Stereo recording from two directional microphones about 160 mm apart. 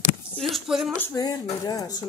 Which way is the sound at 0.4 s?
Centre (ahead or behind).